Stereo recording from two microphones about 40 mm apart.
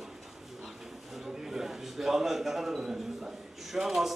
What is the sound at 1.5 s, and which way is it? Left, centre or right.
A man's voice, centre.